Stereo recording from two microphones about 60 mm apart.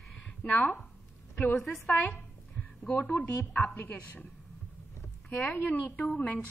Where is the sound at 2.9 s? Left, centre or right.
Left.